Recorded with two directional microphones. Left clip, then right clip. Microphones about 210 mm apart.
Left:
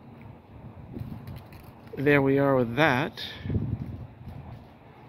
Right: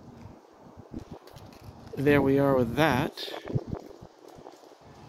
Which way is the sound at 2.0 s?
10° right (ahead or behind).